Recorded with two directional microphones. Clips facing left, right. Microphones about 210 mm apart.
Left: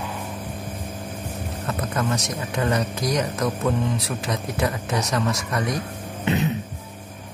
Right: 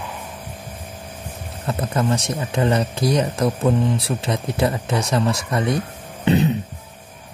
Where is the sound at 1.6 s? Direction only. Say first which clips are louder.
Right 4 dB; 30° right (ahead or behind).